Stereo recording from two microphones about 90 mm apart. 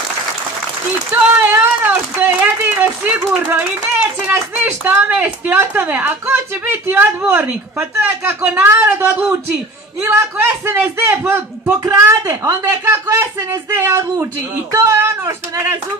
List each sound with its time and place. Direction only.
1.1 s speech: 20° right (ahead or behind)
11.8 s speech: 35° right (ahead or behind)